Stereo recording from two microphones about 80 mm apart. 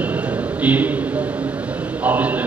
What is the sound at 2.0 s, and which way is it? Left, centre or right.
Speech, centre.